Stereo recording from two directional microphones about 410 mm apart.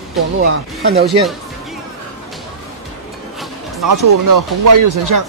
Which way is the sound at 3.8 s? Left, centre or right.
Right.